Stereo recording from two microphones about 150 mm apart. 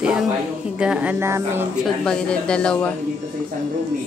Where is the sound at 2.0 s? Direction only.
5° left (ahead or behind).